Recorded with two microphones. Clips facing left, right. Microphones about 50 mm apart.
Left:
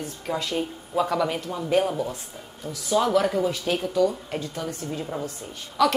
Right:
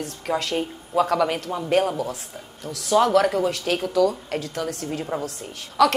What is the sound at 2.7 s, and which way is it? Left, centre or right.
A woman's voice, right.